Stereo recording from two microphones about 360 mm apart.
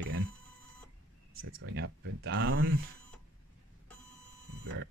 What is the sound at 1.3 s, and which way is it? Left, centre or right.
Speech, right.